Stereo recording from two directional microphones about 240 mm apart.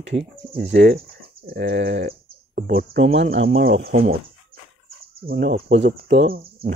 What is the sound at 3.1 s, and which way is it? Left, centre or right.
Speech, right.